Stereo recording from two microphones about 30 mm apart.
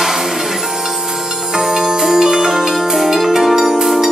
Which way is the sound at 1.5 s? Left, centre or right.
Right.